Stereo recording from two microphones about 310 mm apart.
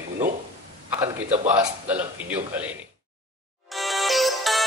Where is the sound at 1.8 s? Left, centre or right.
Centre.